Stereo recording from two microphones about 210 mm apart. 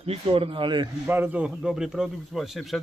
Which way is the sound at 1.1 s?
10° right (ahead or behind).